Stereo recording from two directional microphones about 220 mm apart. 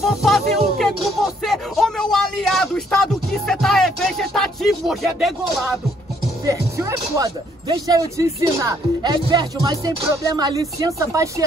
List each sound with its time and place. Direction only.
0.0 s music: centre (ahead or behind)
1.4 s a sound: centre (ahead or behind)
6.4 s speech: 15° right (ahead or behind)